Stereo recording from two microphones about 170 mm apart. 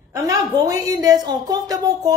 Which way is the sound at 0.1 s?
20° right (ahead or behind).